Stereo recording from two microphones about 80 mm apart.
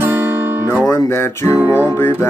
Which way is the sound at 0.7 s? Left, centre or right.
Left.